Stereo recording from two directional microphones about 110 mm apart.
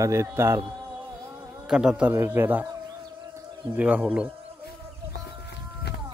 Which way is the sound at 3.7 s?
15° right (ahead or behind).